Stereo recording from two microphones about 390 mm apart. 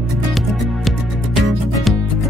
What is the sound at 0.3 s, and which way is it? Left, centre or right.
Music, centre.